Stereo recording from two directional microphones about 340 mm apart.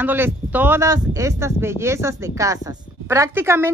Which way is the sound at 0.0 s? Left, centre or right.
Centre.